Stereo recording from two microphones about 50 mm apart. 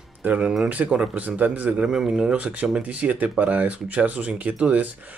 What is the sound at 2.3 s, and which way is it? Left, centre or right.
Speech, right.